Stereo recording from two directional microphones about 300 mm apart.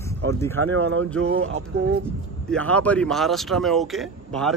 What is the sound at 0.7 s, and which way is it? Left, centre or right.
Speech, right.